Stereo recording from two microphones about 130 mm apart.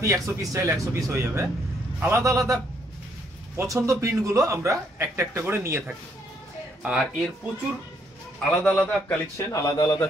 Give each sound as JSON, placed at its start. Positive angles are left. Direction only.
{"t": 0.0, "sound": "speech", "side_deg": -25}
{"t": 6.8, "sound": "speech", "side_deg": -5}
{"t": 8.5, "sound": "a man's voice", "side_deg": 10}
{"t": 9.5, "sound": "a man's voice", "side_deg": 25}